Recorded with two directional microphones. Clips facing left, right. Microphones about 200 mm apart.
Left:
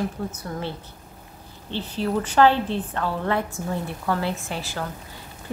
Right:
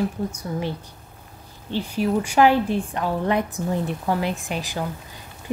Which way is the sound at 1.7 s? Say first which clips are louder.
Right 3 dB; 10° right (ahead or behind).